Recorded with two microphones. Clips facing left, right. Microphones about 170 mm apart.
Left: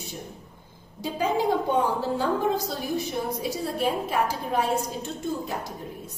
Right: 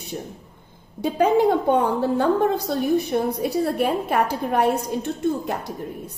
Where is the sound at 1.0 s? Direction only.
60° right (ahead or behind).